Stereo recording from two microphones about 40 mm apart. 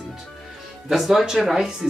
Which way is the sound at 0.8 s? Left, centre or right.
Centre.